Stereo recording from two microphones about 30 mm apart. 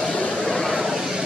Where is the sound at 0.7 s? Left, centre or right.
Centre.